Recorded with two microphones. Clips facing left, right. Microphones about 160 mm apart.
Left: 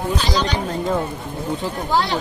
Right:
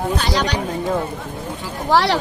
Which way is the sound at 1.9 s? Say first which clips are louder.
Right 5 dB; 80° right.